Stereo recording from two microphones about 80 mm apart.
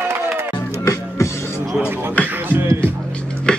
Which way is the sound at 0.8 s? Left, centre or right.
Left.